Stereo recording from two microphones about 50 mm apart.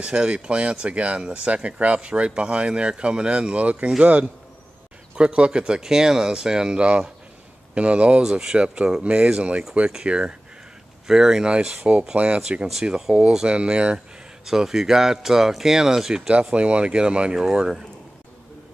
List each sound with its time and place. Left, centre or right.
0.0 s speech: centre
8.2 s speech: centre
12.4 s speech: centre
16.3 s speech: right